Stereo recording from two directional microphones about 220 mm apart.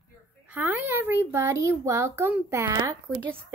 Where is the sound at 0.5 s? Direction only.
10° right (ahead or behind).